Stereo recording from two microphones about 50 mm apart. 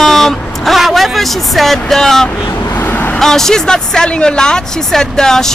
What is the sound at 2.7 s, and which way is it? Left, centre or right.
Vehicle, left.